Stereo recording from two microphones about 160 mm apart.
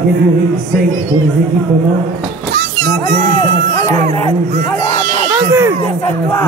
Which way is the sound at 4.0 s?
50° right (ahead or behind).